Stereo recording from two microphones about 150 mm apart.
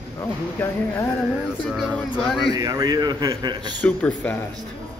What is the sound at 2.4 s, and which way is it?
A man's voice, 25° right (ahead or behind).